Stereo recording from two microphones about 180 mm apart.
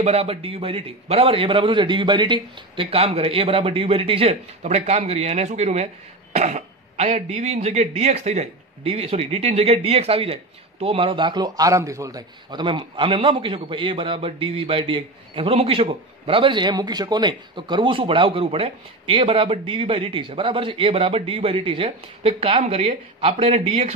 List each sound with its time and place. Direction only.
0.0 s speech: 35° right (ahead or behind)